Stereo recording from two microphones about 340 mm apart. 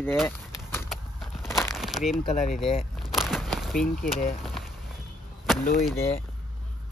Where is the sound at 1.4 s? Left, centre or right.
Centre.